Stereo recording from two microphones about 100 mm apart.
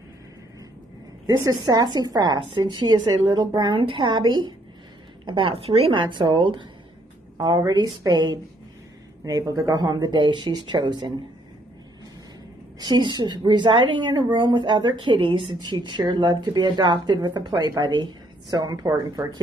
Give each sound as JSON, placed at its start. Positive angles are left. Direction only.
{"t": 1.2, "sound": "a woman's voice", "side_deg": -35}
{"t": 5.2, "sound": "a woman's voice", "side_deg": -60}
{"t": 5.9, "sound": "a woman's voice", "side_deg": -55}
{"t": 12.7, "sound": "a woman's voice", "side_deg": -45}
{"t": 15.6, "sound": "a woman's voice", "side_deg": -50}